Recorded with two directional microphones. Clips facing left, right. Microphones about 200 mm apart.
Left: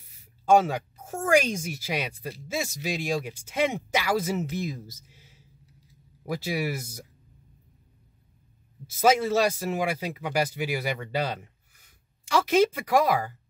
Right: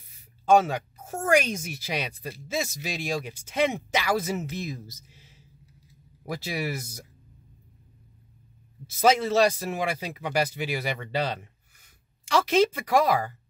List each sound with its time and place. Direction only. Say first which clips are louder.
0.5 s speech: even; 10° left (ahead or behind)
6.2 s speech: left 2 dB; 10° left (ahead or behind)
9.0 s speech: right 1 dB; 10° left (ahead or behind)